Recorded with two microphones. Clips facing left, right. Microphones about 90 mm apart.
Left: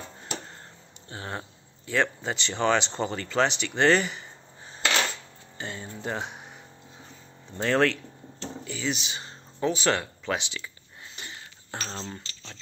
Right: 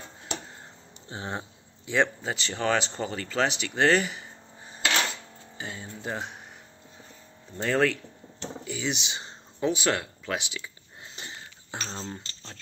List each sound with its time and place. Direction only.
1.0 s speech: 20° right (ahead or behind)
2.2 s speech: centre (ahead or behind)
7.5 s speech: 5° right (ahead or behind); by 9.3 s 25° right (ahead or behind)
9.6 s speech: 10° right (ahead or behind)
11.2 s wheeze: 30° right (ahead or behind)
11.7 s keys jangling: 15° right (ahead or behind)